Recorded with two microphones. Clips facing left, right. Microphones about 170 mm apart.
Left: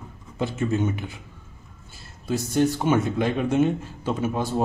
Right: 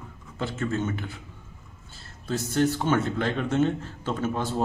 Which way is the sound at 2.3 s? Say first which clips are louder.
Left 2 dB; 15° left (ahead or behind).